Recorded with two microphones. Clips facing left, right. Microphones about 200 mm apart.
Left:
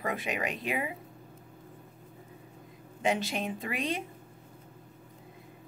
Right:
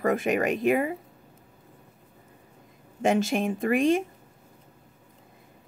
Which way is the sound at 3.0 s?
45° right (ahead or behind).